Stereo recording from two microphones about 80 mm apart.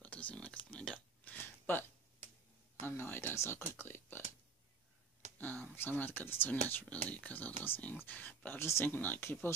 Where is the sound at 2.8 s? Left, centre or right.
Left.